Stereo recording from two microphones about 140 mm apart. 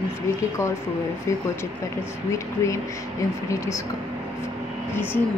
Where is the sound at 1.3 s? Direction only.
20° left (ahead or behind).